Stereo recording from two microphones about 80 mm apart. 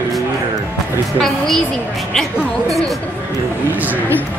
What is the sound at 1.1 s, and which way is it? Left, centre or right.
Speech, centre.